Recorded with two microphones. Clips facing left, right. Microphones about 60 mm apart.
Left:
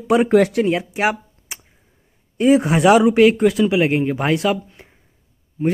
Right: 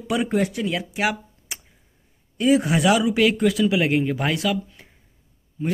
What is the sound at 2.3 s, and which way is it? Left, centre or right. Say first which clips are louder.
Speech: left 4 dB; left.